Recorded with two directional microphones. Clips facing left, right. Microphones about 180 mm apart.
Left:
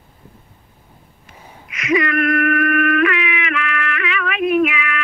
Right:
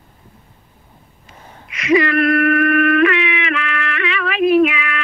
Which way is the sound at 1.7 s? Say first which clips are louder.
Right 3 dB; 30° right (ahead or behind).